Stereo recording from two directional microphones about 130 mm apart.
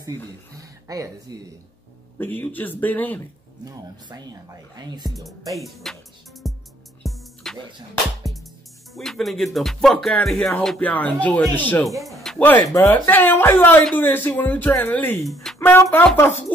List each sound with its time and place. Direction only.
0.0 s speech: 25° right (ahead or behind)
2.1 s speech: 15° left (ahead or behind)
3.6 s speech: 30° right (ahead or behind)
5.5 s music: centre (ahead or behind)
8.9 s music: centre (ahead or behind)
10.6 s speech: 5° left (ahead or behind)
12.0 s speech: centre (ahead or behind)
12.4 s speech: 15° left (ahead or behind)